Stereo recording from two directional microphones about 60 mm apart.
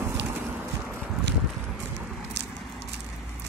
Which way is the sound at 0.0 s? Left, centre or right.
Right.